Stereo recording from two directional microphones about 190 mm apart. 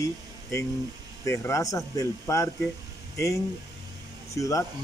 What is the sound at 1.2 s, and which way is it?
Speech, 15° left (ahead or behind).